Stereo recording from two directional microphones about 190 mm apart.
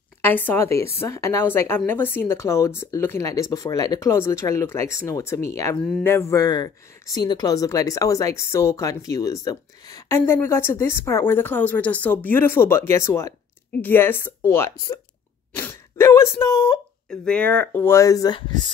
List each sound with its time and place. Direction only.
0.2 s speech: 10° left (ahead or behind)
15.5 s a sound: 10° left (ahead or behind)
17.1 s speech: 5° left (ahead or behind)